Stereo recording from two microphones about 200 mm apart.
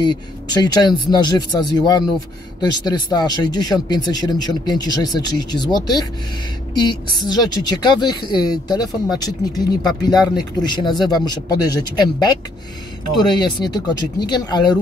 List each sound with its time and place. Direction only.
0.0 s a woman's voice: 20° left (ahead or behind)
6.8 s a woman's voice: 20° left (ahead or behind)